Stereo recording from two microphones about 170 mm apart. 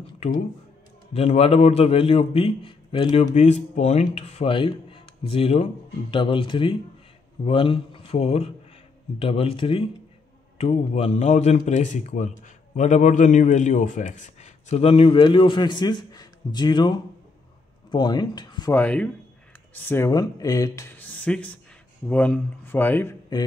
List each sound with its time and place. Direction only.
1.1 s a man's voice: 35° left (ahead or behind)
18.7 s speech: 10° left (ahead or behind)